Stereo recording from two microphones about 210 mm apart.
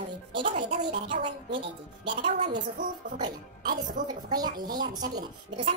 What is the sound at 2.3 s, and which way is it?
Speech, 35° right (ahead or behind).